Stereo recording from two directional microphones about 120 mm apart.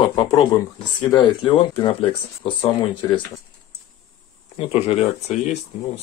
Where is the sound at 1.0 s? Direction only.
35° left (ahead or behind).